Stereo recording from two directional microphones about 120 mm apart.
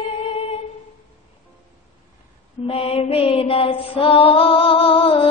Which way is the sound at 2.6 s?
50° left (ahead or behind).